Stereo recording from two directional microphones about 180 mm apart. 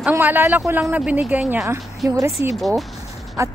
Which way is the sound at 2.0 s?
20° right (ahead or behind).